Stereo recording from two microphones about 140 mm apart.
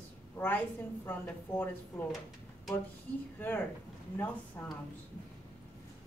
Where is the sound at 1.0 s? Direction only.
15° left (ahead or behind).